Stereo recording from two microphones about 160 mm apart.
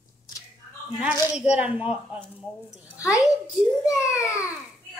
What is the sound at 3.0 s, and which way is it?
A child's voice, 20° left (ahead or behind).